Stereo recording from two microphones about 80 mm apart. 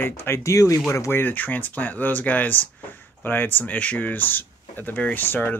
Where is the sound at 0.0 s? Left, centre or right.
Left.